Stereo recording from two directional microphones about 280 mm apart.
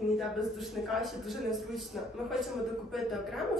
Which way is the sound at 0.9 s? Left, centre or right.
Centre.